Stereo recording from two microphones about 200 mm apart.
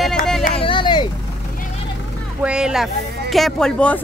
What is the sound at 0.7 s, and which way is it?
Vehicle, 25° left (ahead or behind).